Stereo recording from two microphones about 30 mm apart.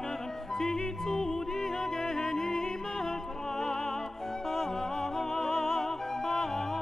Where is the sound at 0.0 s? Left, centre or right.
Centre.